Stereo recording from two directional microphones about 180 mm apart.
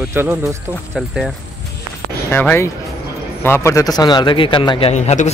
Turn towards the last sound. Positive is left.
turn(degrees=40)  # may be behind; listen again after turning